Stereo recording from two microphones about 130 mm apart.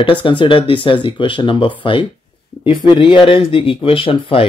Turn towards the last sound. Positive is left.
turn(degrees=45)  # may be behind; listen again after turning